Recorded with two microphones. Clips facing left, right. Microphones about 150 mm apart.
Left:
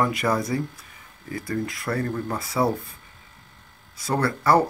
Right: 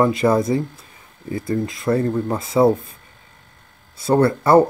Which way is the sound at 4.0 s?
25° right (ahead or behind).